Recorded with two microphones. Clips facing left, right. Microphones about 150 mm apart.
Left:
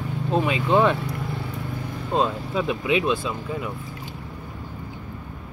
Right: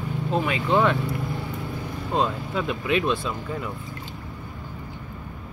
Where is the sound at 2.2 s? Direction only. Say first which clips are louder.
Left 2 dB; 15° left (ahead or behind).